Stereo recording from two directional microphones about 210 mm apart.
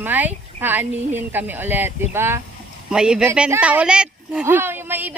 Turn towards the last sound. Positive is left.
turn(degrees=-10)  # may be behind; listen again after turning